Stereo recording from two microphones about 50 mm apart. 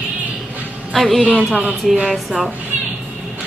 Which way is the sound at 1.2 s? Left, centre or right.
Right.